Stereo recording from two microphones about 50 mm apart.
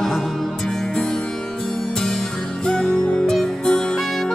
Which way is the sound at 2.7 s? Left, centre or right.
Centre.